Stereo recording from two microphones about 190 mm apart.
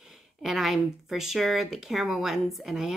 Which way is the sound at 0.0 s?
Centre (ahead or behind).